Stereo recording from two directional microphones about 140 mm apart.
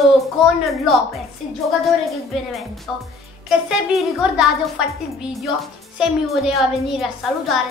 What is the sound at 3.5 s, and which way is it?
A child's voice, 5° right (ahead or behind).